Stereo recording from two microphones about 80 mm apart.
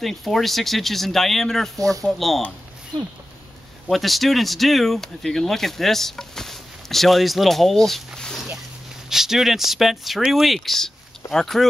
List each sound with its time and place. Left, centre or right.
0.0 s speech: centre
1.8 s speech: right
2.0 s speech: centre
3.9 s speech: centre